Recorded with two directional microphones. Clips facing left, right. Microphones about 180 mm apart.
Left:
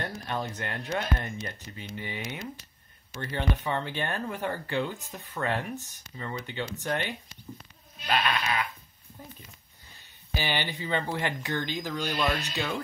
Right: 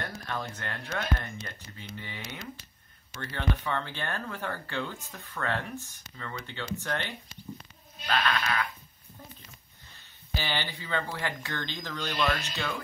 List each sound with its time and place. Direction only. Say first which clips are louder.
0.0 s speech: left 3 dB; 20° left (ahead or behind)
10.3 s speech: left 3 dB; 15° left (ahead or behind)